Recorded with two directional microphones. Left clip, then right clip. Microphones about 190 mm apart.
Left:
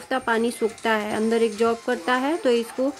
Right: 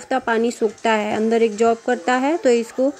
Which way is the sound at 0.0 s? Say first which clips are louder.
Right 3 dB; 15° right (ahead or behind).